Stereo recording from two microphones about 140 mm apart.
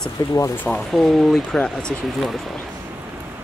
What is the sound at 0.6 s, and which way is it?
Speech, centre (ahead or behind).